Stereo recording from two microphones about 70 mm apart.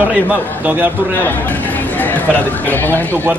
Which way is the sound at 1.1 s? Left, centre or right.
Left.